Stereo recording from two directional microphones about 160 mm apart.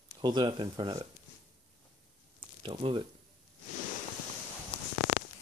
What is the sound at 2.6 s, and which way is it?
Speech, 35° right (ahead or behind).